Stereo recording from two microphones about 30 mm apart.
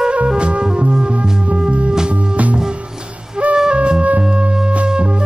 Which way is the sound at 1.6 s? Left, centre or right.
Right.